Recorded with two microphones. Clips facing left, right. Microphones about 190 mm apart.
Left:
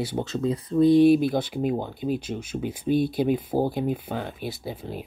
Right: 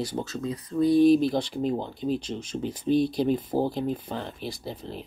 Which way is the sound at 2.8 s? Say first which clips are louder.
Even; 55° left (ahead or behind).